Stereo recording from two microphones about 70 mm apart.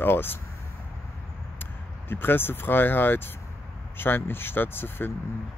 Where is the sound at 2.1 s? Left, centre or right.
Left.